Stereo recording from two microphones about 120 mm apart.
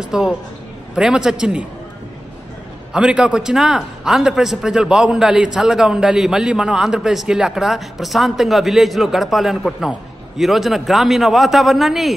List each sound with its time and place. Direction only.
0.1 s a man's voice: 5° right (ahead or behind)
2.9 s a man's voice: 5° right (ahead or behind)